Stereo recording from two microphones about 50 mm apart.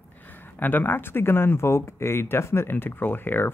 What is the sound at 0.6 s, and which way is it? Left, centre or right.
Speech, left.